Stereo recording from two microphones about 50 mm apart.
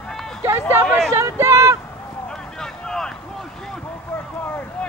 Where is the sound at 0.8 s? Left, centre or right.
Centre.